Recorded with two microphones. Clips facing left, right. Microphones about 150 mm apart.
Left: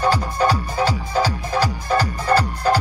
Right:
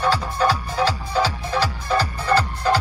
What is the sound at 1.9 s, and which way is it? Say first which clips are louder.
Music: left 1 dB; 10° left (ahead or behind).